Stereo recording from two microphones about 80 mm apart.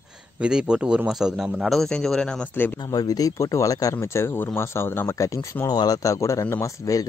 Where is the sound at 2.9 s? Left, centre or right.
Left.